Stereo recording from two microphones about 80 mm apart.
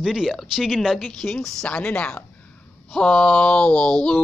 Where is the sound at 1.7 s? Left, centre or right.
Centre.